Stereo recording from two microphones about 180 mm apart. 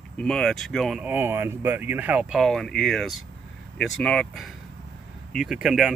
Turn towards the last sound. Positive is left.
turn(degrees=-5)  # may be behind; listen again after turning